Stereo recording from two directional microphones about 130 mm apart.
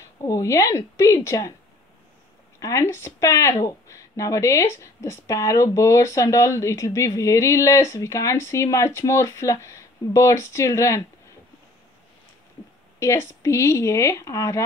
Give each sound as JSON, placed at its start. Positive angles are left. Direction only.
{"t": 0.2, "sound": "speech", "side_deg": 25}
{"t": 2.6, "sound": "speech", "side_deg": 25}
{"t": 13.0, "sound": "speech", "side_deg": 20}